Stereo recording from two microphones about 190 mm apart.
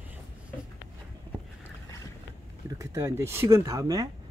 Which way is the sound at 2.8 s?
15° right (ahead or behind).